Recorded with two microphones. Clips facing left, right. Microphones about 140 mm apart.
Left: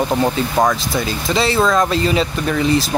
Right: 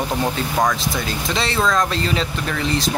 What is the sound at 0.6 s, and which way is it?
Speech, 5° left (ahead or behind).